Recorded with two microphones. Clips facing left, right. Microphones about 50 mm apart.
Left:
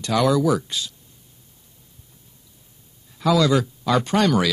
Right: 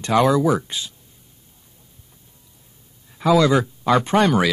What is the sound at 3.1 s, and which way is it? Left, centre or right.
Speech, right.